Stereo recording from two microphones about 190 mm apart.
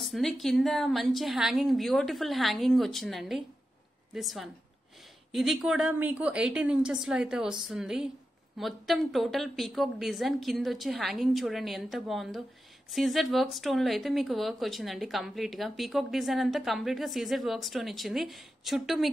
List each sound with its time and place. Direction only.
0.0 s speech: centre (ahead or behind)